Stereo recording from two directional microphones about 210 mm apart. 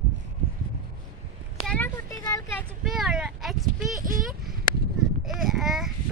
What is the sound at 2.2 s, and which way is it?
Speech, 20° left (ahead or behind).